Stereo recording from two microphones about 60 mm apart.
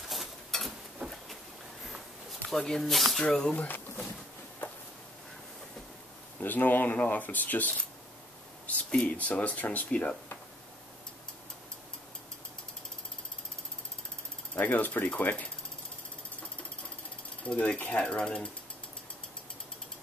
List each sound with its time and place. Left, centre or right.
0.1 s a sound: centre
2.6 s speech: centre
3.2 s speech: centre
3.5 s speech: left
6.4 s speech: left
8.7 s speech: left
14.5 s speech: left
17.4 s speech: left